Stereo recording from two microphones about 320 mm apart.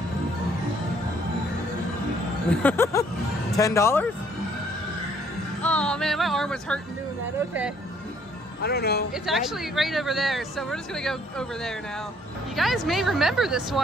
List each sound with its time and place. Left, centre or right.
2.5 s speech: centre
5.6 s music: centre
8.6 s speech: left
9.1 s speech: centre